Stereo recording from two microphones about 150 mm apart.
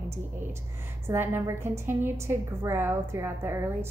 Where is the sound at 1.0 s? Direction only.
15° right (ahead or behind).